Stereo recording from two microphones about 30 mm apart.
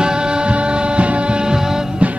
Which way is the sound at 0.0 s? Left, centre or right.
Right.